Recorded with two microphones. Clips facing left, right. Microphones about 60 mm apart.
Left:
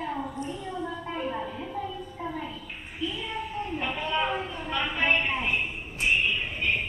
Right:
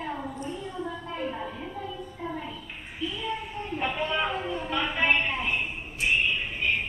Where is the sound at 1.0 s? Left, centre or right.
Left.